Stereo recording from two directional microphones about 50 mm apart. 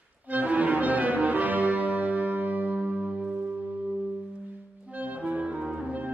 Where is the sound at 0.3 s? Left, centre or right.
Right.